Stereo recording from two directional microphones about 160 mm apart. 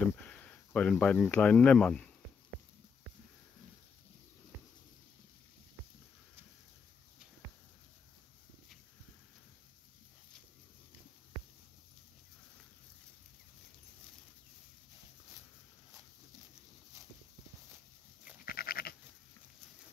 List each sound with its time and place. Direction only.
0.2 s speech: 10° left (ahead or behind)
18.4 s goat: 65° left (ahead or behind)